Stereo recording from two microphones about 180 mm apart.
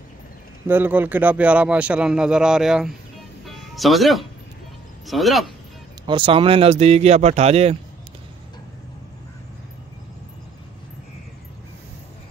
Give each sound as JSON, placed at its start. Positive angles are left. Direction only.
{"t": 0.7, "sound": "speech", "side_deg": -10}
{"t": 3.4, "sound": "music", "side_deg": 0}
{"t": 5.0, "sound": "speech", "side_deg": 0}
{"t": 6.0, "sound": "speech", "side_deg": -30}